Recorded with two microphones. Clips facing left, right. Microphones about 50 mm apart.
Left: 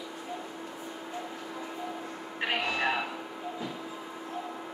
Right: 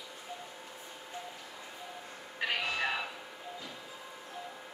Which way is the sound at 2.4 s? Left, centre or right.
Left.